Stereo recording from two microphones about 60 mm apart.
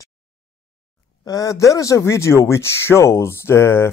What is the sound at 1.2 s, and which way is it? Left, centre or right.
Speech, left.